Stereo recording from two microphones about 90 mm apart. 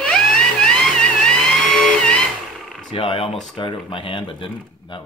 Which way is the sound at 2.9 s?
85° left.